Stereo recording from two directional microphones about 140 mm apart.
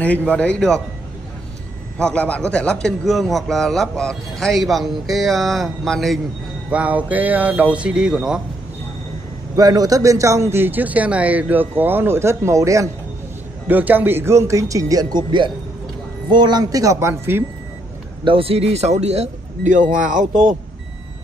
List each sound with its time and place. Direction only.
0.0 s a man's voice: 10° left (ahead or behind)
2.0 s a man's voice: 10° left (ahead or behind)
6.7 s a man's voice: 10° right (ahead or behind)
9.6 s a man's voice: 25° right (ahead or behind)
18.2 s speech: 40° right (ahead or behind); by 20.5 s 70° right (ahead or behind)